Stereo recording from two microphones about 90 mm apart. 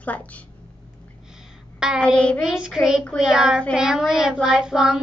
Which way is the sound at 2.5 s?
5° right (ahead or behind).